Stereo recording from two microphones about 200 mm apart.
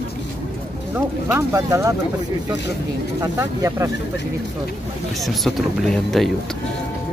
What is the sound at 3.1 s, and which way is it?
Speech, 15° right (ahead or behind).